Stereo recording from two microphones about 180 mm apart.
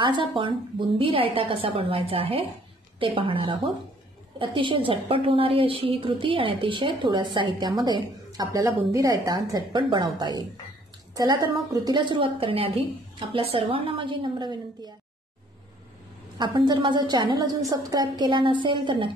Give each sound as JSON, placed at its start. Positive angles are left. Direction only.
{"t": 0.0, "sound": "a woman's voice", "side_deg": -25}
{"t": 11.7, "sound": "a woman's voice", "side_deg": -25}
{"t": 16.3, "sound": "a woman's voice", "side_deg": -25}